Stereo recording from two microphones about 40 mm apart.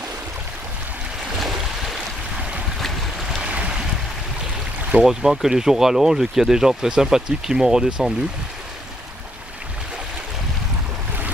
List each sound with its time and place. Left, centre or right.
3.4 s boat: right
5.0 s speech: centre